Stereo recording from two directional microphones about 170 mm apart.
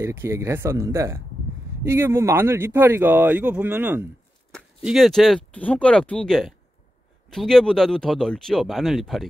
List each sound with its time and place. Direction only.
0.0 s speech: 15° right (ahead or behind)
4.8 s speech: centre (ahead or behind)